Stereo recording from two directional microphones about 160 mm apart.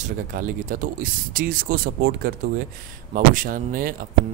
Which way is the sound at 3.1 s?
60° right (ahead or behind).